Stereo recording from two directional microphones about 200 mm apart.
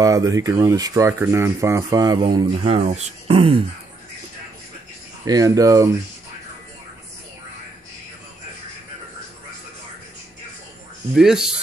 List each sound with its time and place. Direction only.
0.0 s speech: 15° right (ahead or behind)
5.2 s speech: 20° right (ahead or behind)
11.1 s speech: 5° right (ahead or behind)